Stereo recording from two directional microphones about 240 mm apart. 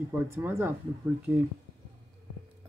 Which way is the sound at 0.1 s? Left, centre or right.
Centre.